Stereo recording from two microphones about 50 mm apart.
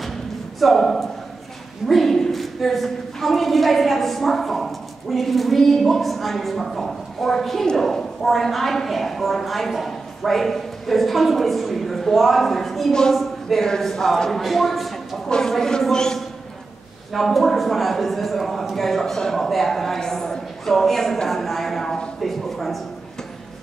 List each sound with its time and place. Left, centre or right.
0.6 s a woman's voice: centre
15.2 s a man's voice: centre
22.2 s a sound: centre